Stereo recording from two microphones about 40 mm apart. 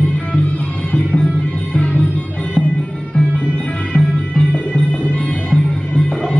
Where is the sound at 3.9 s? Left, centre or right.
Left.